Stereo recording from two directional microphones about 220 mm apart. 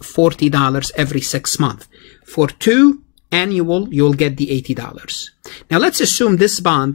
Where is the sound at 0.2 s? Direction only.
5° left (ahead or behind).